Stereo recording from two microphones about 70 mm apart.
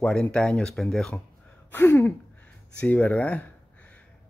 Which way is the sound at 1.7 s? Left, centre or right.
Left.